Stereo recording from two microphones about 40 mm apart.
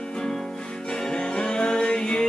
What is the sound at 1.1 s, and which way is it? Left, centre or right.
Music, left.